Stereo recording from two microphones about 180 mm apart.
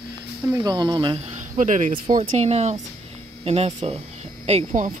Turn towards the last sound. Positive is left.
turn(degrees=-40)  # may be behind; listen again after turning